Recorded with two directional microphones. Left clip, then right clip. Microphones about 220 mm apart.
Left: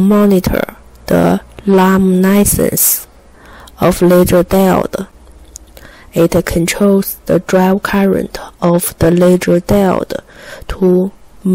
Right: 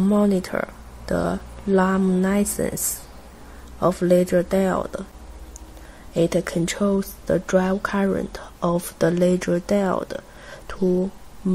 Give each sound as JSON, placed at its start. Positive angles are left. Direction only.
{"t": 0.0, "sound": "speech", "side_deg": 40}
{"t": 3.8, "sound": "speech", "side_deg": 40}
{"t": 6.1, "sound": "speech", "side_deg": 35}